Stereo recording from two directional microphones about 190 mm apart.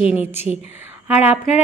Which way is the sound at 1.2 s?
35° left (ahead or behind).